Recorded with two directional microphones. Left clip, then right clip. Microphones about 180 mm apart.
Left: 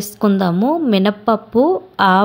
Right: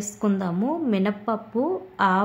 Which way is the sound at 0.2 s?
30° left (ahead or behind).